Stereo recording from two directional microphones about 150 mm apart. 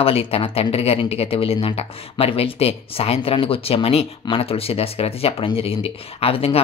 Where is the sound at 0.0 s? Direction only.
40° left (ahead or behind).